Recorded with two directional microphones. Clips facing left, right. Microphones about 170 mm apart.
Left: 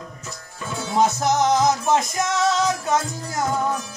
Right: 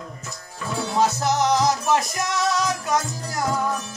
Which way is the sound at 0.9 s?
20° left (ahead or behind).